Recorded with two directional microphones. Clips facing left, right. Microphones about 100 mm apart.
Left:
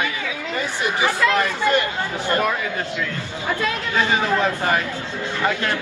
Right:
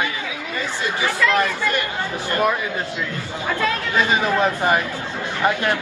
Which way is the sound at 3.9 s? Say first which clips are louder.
Even; 15° right (ahead or behind).